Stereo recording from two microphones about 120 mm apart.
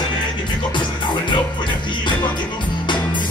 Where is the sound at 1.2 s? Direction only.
40° left (ahead or behind).